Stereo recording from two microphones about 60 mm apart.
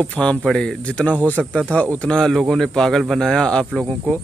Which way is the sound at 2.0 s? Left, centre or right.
Centre.